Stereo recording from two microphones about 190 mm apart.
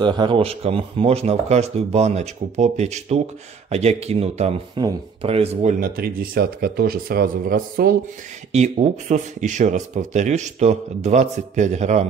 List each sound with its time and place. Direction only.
0.0 s speech: 25° right (ahead or behind); by 8.0 s 50° right (ahead or behind)
8.5 s speech: 35° right (ahead or behind)